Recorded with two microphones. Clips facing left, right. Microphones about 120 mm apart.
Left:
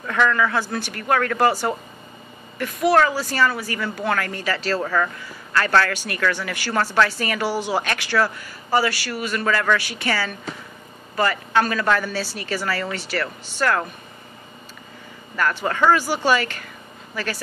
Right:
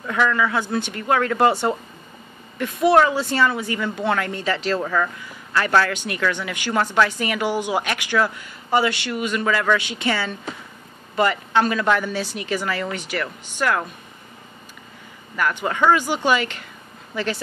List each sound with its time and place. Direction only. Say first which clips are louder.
0.0 s a woman's voice: even; 10° right (ahead or behind)
15.3 s a woman's voice: even; 15° right (ahead or behind)